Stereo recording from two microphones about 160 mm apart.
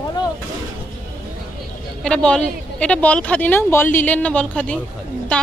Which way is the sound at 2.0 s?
5° left (ahead or behind).